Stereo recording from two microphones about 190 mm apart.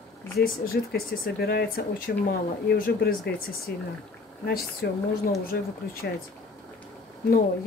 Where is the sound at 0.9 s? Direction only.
55° left (ahead or behind).